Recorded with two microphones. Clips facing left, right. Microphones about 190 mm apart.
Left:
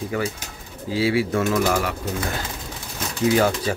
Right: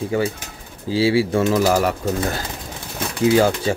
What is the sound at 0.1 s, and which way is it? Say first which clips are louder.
Speech: right 5 dB; 30° right (ahead or behind).